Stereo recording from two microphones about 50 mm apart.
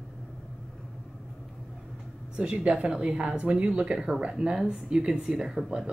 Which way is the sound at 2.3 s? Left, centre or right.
Right.